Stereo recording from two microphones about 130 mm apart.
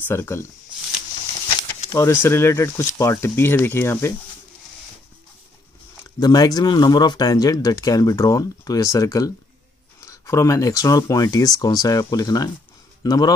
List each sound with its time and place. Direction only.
0.1 s speech: 20° left (ahead or behind)
1.9 s speech: 25° left (ahead or behind)
6.0 s a man's voice: 30° left (ahead or behind)